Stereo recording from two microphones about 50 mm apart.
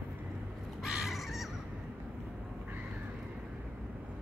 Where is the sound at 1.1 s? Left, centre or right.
Centre.